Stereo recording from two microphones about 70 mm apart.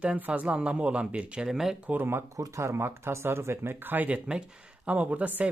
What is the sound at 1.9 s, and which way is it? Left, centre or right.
Speech, right.